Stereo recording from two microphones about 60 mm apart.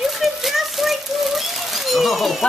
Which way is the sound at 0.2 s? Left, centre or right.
Centre.